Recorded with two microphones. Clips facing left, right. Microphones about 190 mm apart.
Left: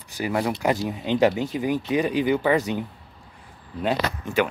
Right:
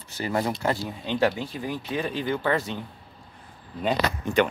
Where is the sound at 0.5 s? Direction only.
15° left (ahead or behind).